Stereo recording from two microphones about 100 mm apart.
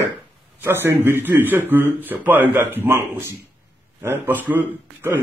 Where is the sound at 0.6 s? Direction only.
25° right (ahead or behind).